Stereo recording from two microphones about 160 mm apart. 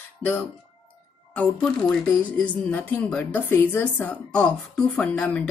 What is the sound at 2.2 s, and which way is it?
A woman's voice, 10° left (ahead or behind).